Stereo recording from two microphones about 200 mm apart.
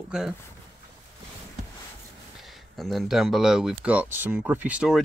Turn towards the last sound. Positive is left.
turn(degrees=-5)  # may be behind; listen again after turning